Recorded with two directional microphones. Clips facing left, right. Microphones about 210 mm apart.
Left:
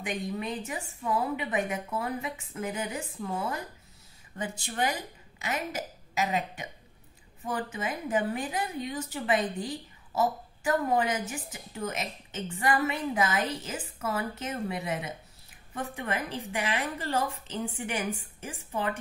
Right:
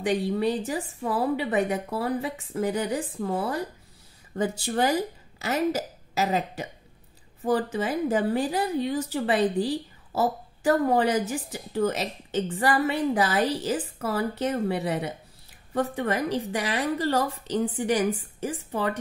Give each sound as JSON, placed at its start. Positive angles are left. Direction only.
{"t": 0.0, "sound": "a woman's voice", "side_deg": -35}